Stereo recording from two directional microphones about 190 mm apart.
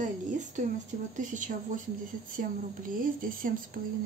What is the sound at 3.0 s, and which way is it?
Speech, 45° right (ahead or behind).